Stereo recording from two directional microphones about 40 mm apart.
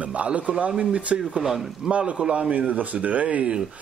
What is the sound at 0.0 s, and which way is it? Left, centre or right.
Speech, right.